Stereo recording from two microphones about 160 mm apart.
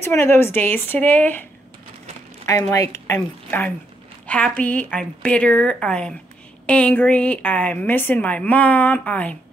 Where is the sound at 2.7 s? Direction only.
20° left (ahead or behind).